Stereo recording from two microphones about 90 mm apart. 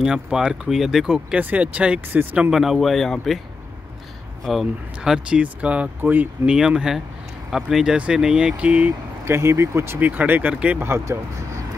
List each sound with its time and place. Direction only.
0.0 s speech: 5° right (ahead or behind)
2.5 s speech: centre (ahead or behind)
4.5 s speech: 5° right (ahead or behind); by 6.5 s 20° right (ahead or behind)
6.5 s speech: 5° right (ahead or behind)
9.2 s speech: 30° right (ahead or behind)
9.9 s speech: 20° right (ahead or behind)
10.8 s speech: 30° right (ahead or behind)